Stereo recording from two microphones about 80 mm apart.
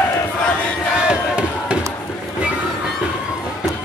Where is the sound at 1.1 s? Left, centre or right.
Centre.